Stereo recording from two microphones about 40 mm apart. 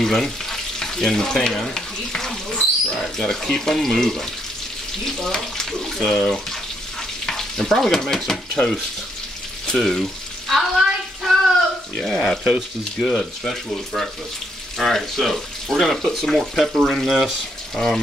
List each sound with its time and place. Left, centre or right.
0.0 s frying: centre
5.3 s speech: centre
7.2 s stir: centre
8.6 s stir: left
9.7 s speech: centre
10.5 s a sound: centre
12.0 s speech: centre
12.4 s speech: centre
14.8 s speech: centre
17.7 s speech: centre